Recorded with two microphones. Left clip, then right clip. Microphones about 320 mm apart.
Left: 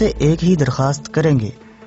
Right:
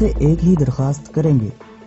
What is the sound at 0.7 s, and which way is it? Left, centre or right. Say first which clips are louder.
Speech: left 5 dB; left.